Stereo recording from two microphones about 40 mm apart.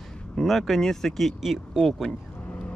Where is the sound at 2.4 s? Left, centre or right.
Left.